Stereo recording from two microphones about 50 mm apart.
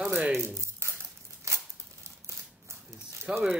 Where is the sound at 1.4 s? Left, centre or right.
Right.